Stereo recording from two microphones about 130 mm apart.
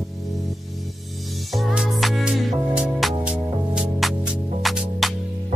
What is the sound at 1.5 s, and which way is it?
Music, 5° right (ahead or behind).